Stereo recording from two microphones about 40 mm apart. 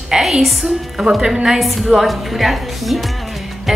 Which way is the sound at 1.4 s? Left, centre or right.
Centre.